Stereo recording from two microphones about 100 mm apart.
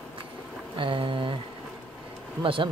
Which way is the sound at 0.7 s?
60° right (ahead or behind).